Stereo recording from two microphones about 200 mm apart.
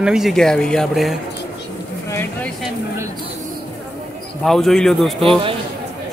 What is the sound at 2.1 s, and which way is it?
Speech, 10° left (ahead or behind).